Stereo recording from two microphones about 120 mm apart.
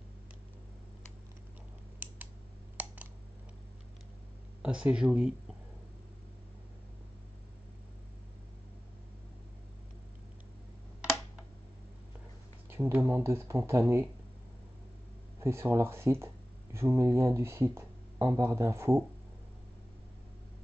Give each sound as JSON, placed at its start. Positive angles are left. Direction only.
{"t": 2.8, "sound": "a sound", "side_deg": -10}
{"t": 4.6, "sound": "speech", "side_deg": -10}
{"t": 12.6, "sound": "speech", "side_deg": -20}
{"t": 15.4, "sound": "speech", "side_deg": -20}